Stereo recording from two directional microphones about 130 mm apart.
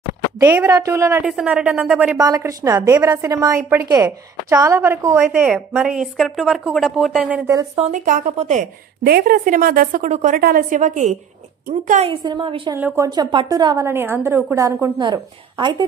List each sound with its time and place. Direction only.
0.4 s a woman's voice: 20° right (ahead or behind)
1.2 s speech: 5° right (ahead or behind)
2.1 s a woman's voice: 25° right (ahead or behind)
5.2 s speech: 5° right (ahead or behind)
7.2 s speech: 10° right (ahead or behind)
7.9 s speech: 85° right
8.4 s a woman's voice: 65° right (ahead or behind)
9.2 s a woman's voice: 90° right; by 11.1 s 75° right (ahead or behind)
12.2 s a woman's voice: 40° right (ahead or behind)
12.7 s a woman's voice: 20° right (ahead or behind)
13.8 s a woman's voice: 20° right (ahead or behind)
15.0 s a woman's voice: 35° right (ahead or behind)